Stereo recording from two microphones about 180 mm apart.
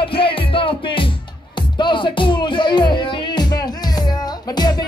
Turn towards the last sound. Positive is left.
turn(degrees=25)  # may be behind; listen again after turning